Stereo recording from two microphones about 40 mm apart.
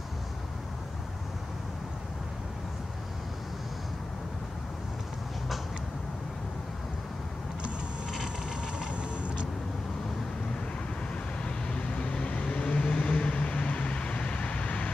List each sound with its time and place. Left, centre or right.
8.5 s vehicle: right
11.4 s vehicle: left